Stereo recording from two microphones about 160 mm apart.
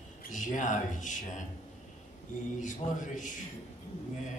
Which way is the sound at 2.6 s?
55° left (ahead or behind).